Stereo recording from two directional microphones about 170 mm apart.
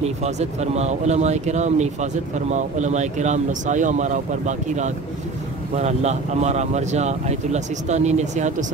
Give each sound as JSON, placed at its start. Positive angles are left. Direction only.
{"t": 0.0, "sound": "speech", "side_deg": -40}